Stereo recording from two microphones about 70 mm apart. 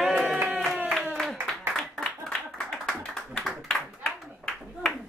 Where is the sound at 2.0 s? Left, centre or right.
Centre.